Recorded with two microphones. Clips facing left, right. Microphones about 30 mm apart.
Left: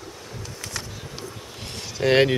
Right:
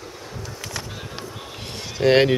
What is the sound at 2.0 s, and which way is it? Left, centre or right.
Speech, centre.